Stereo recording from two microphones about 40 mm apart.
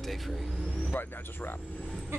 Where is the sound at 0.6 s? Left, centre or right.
Left.